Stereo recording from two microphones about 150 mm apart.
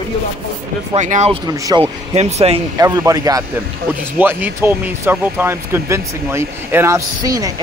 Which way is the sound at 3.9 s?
10° right (ahead or behind).